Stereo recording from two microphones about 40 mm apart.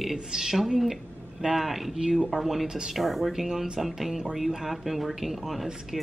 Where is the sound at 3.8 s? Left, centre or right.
Centre.